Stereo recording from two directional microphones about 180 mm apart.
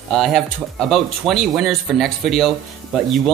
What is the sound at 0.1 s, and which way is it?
Speech, centre (ahead or behind).